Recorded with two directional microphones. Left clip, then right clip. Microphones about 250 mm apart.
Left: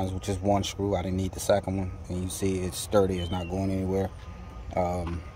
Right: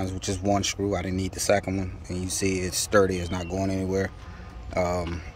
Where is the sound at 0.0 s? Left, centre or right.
Centre.